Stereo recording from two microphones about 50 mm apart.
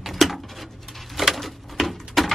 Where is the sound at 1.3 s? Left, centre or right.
Centre.